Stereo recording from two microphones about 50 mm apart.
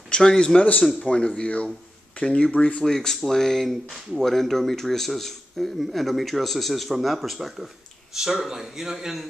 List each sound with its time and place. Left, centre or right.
0.1 s speech: centre
0.6 s speech: left
1.0 s speech: centre
2.8 s speech: centre